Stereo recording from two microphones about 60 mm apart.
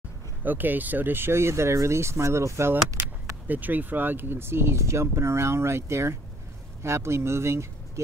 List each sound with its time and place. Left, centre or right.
0.4 s speech: right
3.4 s speech: right